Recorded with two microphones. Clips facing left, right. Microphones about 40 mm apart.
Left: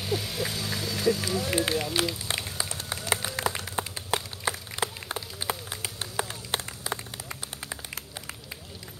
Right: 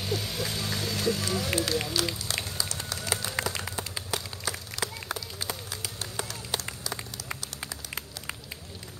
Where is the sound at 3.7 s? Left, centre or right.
Left.